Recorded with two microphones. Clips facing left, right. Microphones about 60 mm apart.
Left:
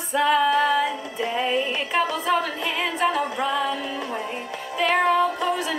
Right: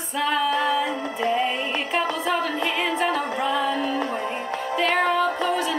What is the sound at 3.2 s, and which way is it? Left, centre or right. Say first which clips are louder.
Music: right 1 dB; right.